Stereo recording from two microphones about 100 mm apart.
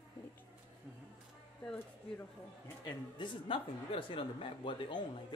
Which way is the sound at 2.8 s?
50° left (ahead or behind).